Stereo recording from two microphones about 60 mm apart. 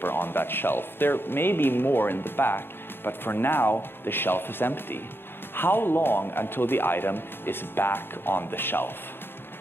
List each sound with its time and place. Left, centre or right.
0.0 s speech: left